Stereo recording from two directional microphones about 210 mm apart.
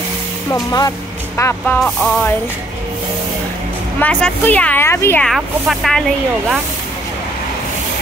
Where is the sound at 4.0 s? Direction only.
5° left (ahead or behind).